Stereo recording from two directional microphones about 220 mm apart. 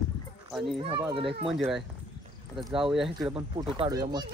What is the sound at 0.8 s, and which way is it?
Speech, 20° right (ahead or behind).